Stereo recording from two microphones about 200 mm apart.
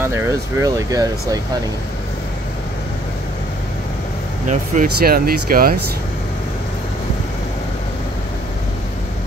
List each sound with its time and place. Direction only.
0.0 s speech: 15° right (ahead or behind)
4.5 s speech: 45° right (ahead or behind)